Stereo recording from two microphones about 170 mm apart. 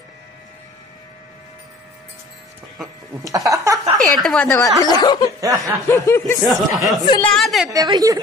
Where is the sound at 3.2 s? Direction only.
20° right (ahead or behind).